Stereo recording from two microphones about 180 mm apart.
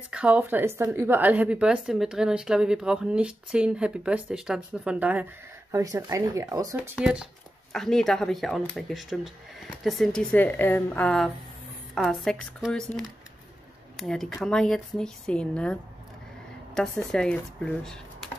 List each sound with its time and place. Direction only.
0.1 s speech: 5° right (ahead or behind)
6.8 s speech: 5° right (ahead or behind)